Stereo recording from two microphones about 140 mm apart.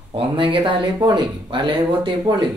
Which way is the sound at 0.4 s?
35° right (ahead or behind).